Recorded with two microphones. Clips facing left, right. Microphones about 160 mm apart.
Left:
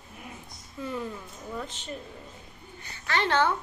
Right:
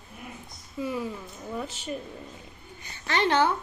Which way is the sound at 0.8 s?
10° right (ahead or behind).